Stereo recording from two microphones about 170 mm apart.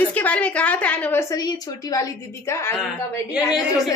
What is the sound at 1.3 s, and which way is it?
A woman's voice, 25° left (ahead or behind).